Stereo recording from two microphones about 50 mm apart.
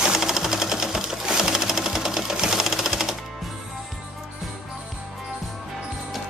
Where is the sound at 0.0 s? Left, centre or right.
Centre.